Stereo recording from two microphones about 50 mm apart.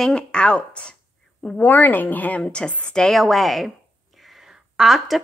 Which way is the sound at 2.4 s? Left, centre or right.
Centre.